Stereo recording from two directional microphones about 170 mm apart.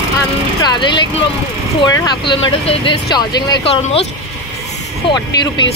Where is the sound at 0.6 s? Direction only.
25° left (ahead or behind).